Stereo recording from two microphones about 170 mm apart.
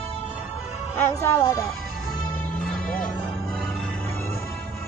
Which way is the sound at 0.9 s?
15° left (ahead or behind).